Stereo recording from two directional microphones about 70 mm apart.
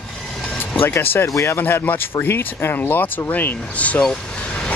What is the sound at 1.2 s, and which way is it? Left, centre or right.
Speech, left.